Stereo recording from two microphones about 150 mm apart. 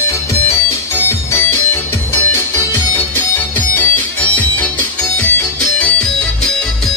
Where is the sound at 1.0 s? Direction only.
15° left (ahead or behind).